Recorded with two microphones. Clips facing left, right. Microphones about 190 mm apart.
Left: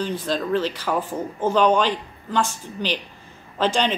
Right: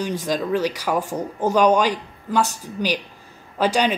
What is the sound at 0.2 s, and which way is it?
A woman's voice, 10° right (ahead or behind).